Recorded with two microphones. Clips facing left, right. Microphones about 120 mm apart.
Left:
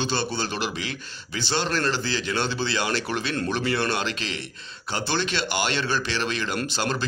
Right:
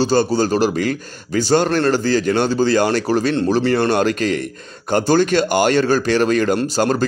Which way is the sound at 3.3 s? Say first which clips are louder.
Right 10 dB; 30° right (ahead or behind).